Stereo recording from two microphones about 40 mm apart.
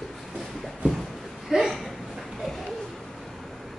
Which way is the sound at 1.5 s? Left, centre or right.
Centre.